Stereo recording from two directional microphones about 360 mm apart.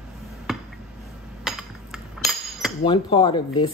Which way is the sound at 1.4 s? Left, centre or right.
Centre.